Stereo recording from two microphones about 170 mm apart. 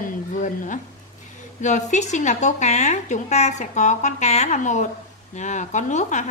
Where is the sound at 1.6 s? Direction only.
45° left (ahead or behind).